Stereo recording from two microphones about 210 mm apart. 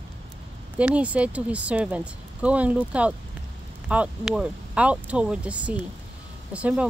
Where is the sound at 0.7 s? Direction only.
5° right (ahead or behind).